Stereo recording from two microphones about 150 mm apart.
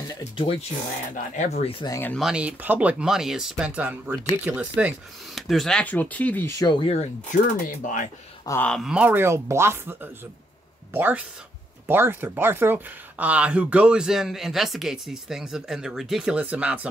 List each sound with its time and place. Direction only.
0.4 s speech: 40° left (ahead or behind)
1.1 s speech: 50° left (ahead or behind)
1.9 s speech: 15° left (ahead or behind)
2.1 s speech: 5° right (ahead or behind); by 6.5 s 10° left (ahead or behind)
6.6 s speech: 30° left (ahead or behind)
7.6 s speech: 60° left (ahead or behind)
8.5 s speech: 15° left (ahead or behind)
8.7 s speech: 5° right (ahead or behind)